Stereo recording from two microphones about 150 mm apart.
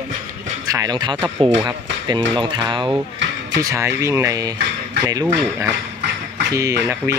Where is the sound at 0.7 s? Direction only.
25° right (ahead or behind).